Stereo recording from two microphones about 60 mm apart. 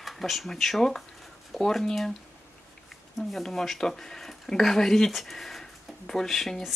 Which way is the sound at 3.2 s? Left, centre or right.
Centre.